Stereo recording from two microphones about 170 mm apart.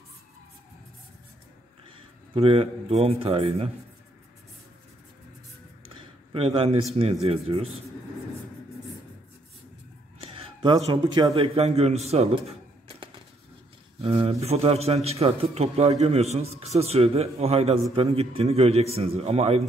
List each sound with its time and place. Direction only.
2.0 s speech: 35° right (ahead or behind)
6.3 s a man's voice: 35° right (ahead or behind)
10.2 s a sound: 30° right (ahead or behind)
10.9 s a man's voice: 25° right (ahead or behind)